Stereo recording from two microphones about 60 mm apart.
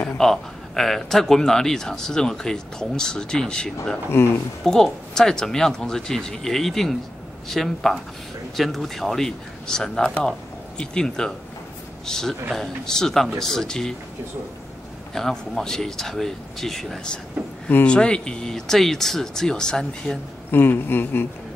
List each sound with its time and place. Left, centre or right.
0.2 s a man's voice: centre
4.1 s speech: left
4.6 s a man's voice: centre
15.1 s a man's voice: centre
20.5 s speech: left